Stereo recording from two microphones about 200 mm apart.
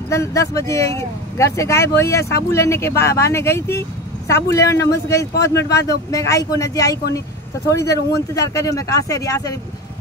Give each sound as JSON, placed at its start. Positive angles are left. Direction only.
{"t": 0.1, "sound": "speech", "side_deg": 15}